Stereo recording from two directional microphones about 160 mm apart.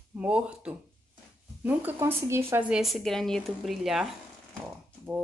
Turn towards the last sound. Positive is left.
turn(degrees=-10)  # may be behind; listen again after turning